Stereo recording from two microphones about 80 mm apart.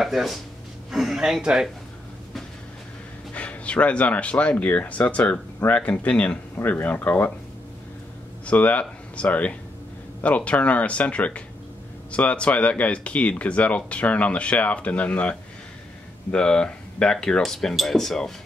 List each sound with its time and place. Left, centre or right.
0.0 s speech: centre
3.3 s speech: centre
8.5 s speech: centre